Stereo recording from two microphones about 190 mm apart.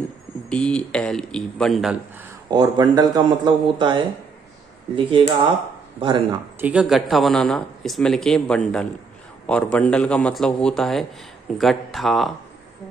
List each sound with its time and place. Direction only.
0.5 s speech: 5° left (ahead or behind)
2.5 s a man's voice: 20° right (ahead or behind)
6.6 s speech: 5° right (ahead or behind)